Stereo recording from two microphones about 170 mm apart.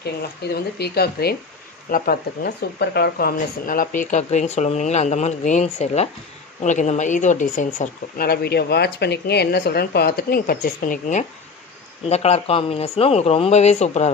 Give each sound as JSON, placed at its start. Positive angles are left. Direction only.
{"t": 0.0, "sound": "speech", "side_deg": 75}
{"t": 1.9, "sound": "speech", "side_deg": 55}